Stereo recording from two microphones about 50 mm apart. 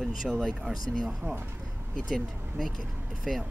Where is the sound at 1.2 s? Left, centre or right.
Right.